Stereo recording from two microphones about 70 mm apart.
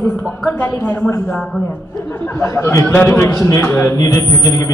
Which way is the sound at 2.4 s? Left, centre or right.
Left.